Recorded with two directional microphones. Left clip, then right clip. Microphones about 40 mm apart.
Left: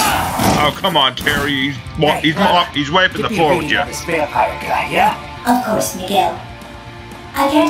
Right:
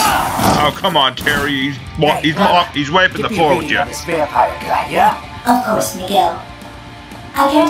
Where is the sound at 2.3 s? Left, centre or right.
Centre.